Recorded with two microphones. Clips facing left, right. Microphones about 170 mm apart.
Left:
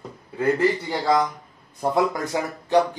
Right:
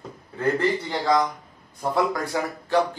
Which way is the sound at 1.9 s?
20° left (ahead or behind).